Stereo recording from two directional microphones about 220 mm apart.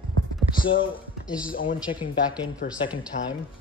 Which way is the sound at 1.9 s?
35° left (ahead or behind).